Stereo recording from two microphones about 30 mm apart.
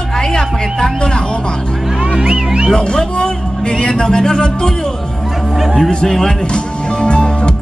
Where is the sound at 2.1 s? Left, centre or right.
Right.